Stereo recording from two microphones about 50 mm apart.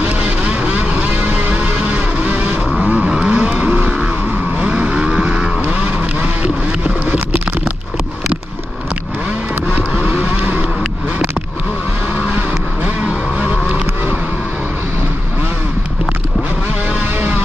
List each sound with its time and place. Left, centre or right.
0.2 s music: right
2.9 s vehicle: right
9.9 s vehicle: right
13.0 s music: centre